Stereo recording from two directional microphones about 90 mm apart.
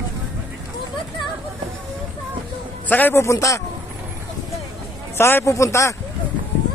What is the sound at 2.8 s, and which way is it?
Speech, 20° left (ahead or behind).